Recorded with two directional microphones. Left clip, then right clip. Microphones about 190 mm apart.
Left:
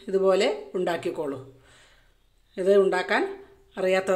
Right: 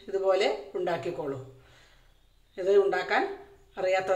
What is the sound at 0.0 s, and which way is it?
Speech, 45° left (ahead or behind).